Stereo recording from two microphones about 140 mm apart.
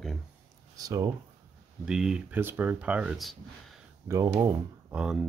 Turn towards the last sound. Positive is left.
turn(degrees=-5)  # may be behind; listen again after turning